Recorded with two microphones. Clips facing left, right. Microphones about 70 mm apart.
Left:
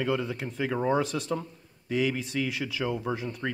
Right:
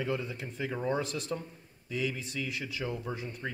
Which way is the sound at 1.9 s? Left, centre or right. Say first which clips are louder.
Left 7 dB; left.